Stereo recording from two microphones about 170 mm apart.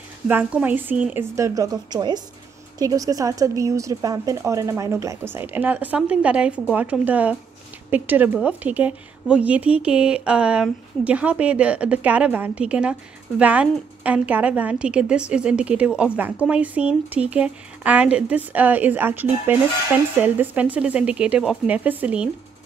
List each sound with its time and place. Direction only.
0.3 s a woman's voice: 10° right (ahead or behind)